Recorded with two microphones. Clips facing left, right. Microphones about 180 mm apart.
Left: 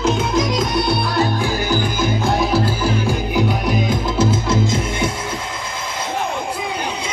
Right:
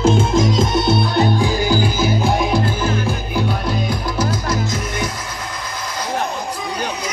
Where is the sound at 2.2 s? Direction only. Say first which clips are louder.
Even; 5° left (ahead or behind); by 5.1 s 25° left (ahead or behind).